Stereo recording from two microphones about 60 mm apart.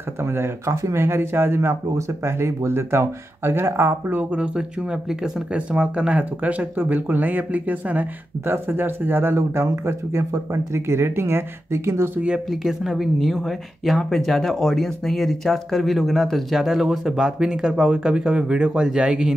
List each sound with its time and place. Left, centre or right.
0.2 s speech: right
4.1 s speech: right
12.6 s speech: centre